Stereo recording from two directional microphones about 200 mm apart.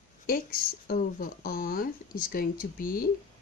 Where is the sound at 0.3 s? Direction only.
45° left (ahead or behind).